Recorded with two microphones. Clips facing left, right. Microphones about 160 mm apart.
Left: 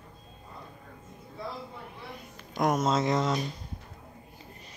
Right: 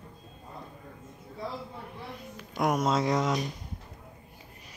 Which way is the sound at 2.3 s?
5° right (ahead or behind).